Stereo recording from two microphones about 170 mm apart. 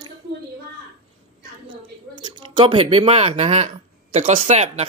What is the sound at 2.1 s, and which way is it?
Speech, 25° right (ahead or behind).